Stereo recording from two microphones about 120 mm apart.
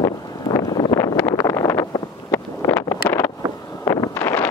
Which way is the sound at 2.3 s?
20° left (ahead or behind).